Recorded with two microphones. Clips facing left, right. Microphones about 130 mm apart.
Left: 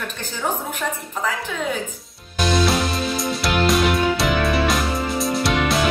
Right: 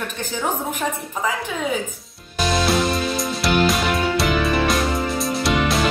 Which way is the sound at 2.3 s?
Centre (ahead or behind).